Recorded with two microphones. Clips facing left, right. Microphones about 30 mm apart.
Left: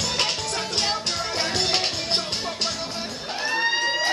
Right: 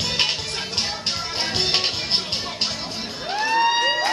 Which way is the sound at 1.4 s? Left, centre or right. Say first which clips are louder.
Right 2 dB; right.